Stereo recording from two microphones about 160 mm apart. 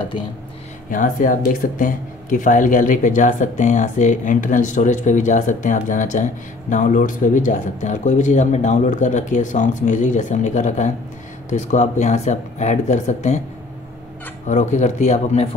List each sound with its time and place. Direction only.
0.8 s speech: 55° left (ahead or behind)
14.5 s speech: 50° left (ahead or behind)